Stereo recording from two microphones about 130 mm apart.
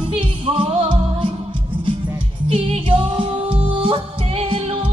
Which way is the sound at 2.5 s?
45° right (ahead or behind).